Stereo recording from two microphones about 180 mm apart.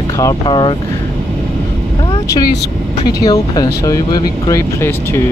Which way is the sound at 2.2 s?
20° left (ahead or behind).